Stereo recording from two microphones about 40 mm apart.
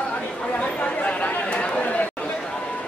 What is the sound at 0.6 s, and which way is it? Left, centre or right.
Chatter, left.